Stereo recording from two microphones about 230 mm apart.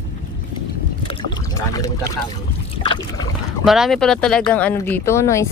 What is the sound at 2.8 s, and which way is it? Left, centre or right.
Trickle, left.